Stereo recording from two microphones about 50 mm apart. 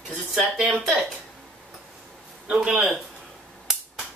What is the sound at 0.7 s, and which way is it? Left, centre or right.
Speech, centre.